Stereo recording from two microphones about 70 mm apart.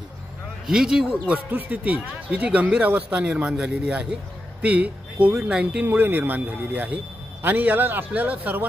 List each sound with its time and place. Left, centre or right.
0.7 s speech: centre
1.5 s speech: right
5.9 s speech: right